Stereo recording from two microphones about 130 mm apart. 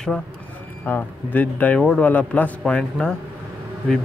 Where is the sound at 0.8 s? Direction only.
15° left (ahead or behind).